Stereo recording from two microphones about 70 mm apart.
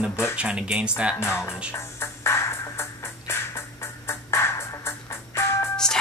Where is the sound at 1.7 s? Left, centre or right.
Left.